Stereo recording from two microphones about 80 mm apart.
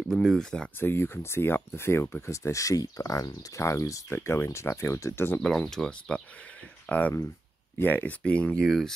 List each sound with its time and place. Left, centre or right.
0.1 s speech: centre
0.7 s speech: left
5.7 s speech: centre
8.6 s speech: centre